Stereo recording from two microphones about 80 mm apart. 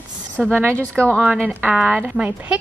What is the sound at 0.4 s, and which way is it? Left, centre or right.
A woman's voice, right.